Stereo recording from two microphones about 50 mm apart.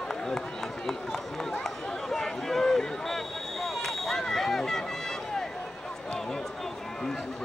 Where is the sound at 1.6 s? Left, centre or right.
Centre.